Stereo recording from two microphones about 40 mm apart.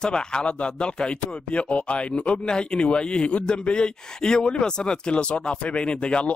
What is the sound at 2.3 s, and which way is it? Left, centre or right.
Speech, left.